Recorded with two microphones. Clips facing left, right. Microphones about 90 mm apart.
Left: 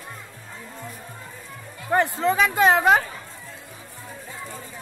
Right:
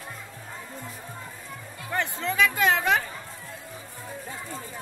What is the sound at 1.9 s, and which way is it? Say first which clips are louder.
Music: left 8 dB; 40° left (ahead or behind).